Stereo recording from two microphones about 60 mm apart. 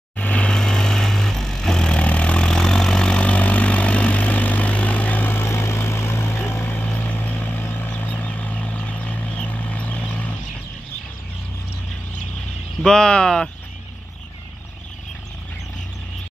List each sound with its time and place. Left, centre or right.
0.2 s vehicle: centre
12.8 s speech: centre